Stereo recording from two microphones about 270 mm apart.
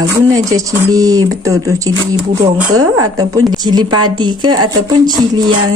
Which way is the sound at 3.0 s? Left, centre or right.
Centre.